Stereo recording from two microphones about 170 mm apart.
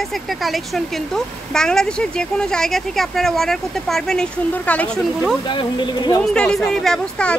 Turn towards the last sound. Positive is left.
turn(degrees=5)  # may be behind; listen again after turning